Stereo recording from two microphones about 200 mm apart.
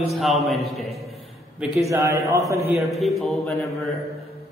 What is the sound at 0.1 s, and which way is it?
Speech, centre (ahead or behind).